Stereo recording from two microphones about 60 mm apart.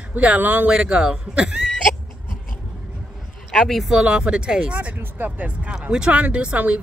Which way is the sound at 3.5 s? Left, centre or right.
Centre.